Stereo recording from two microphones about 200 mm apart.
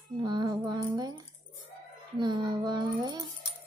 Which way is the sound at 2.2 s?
20° right (ahead or behind).